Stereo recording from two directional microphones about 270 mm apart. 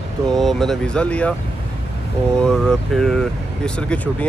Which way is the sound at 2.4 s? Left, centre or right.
Centre.